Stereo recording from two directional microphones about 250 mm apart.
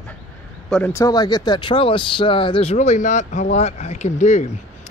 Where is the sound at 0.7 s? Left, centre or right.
Centre.